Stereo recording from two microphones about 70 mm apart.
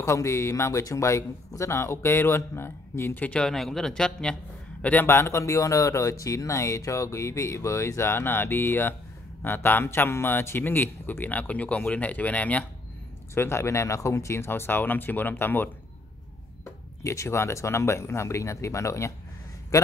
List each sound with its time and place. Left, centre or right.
0.0 s speech: left
3.2 s a man's voice: left
3.4 s a man's voice: centre
5.0 s a man's voice: left
13.3 s speech: left
17.0 s speech: left